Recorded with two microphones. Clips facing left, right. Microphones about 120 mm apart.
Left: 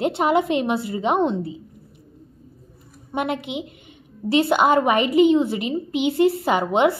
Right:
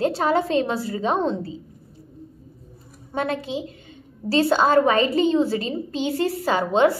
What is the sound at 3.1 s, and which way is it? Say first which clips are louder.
A woman's voice: even; 20° left (ahead or behind).